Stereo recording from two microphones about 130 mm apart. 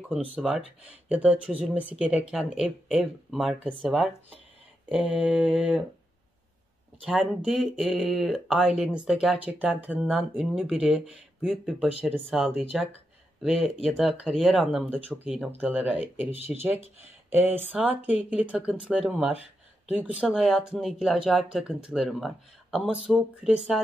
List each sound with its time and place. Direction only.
0.1 s speech: 10° right (ahead or behind)
4.8 s a sound: 10° right (ahead or behind)
5.2 s speech: 5° right (ahead or behind)
7.1 s speech: 5° right (ahead or behind)